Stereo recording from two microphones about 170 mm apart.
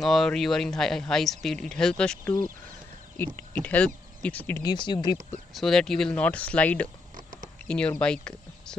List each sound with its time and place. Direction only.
0.0 s speech: centre (ahead or behind)
3.3 s speech: 10° left (ahead or behind)
4.6 s speech: 25° left (ahead or behind)
5.5 s speech: centre (ahead or behind)